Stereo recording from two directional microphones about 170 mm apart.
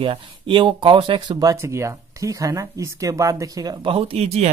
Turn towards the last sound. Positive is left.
turn(degrees=-40)  # may be behind; listen again after turning